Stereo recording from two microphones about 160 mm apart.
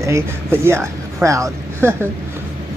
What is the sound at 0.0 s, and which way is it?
Speech, 15° right (ahead or behind).